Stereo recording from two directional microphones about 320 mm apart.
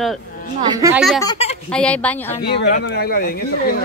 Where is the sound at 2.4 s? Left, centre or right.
Left.